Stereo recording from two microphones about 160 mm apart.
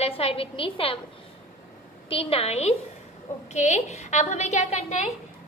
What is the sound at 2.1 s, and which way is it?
A woman's voice, 35° left (ahead or behind).